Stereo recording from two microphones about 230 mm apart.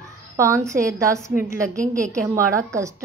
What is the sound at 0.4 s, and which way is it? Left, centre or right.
A woman's voice, centre.